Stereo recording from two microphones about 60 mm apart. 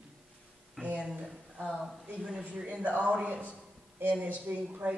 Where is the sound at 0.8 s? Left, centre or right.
Centre.